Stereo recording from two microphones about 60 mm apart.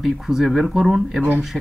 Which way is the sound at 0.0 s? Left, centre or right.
Centre.